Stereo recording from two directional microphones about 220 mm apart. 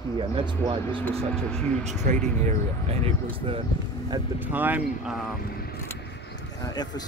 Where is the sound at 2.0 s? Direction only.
30° right (ahead or behind).